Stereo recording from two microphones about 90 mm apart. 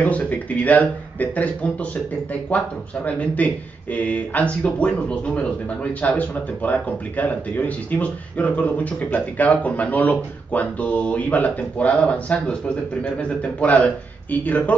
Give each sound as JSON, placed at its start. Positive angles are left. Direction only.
{"t": 0.0, "sound": "speech", "side_deg": 15}
{"t": 3.1, "sound": "speech", "side_deg": 15}